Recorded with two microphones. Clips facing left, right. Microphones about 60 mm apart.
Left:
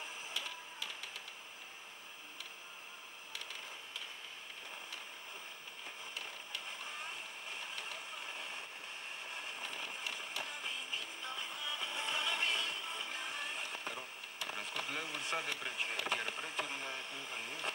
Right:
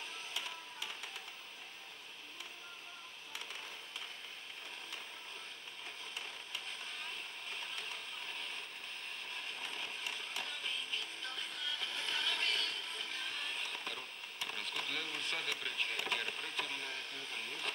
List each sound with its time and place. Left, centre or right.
6.9 s splash: centre
9.3 s printer: centre